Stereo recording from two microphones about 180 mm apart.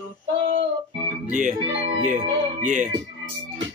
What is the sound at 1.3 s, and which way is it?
Speech, 45° right (ahead or behind).